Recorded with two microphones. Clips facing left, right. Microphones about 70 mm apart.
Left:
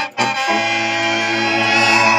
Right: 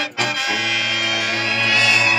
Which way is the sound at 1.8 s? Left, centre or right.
Left.